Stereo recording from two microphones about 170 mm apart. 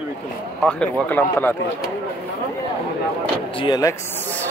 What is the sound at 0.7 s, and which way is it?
Speech, 5° left (ahead or behind).